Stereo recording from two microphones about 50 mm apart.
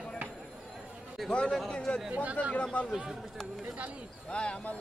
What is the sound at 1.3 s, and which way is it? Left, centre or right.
Speech, left.